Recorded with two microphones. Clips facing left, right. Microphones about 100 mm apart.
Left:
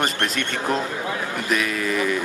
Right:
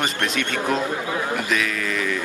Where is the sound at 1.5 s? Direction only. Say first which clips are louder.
Left 1 dB; 10° left (ahead or behind).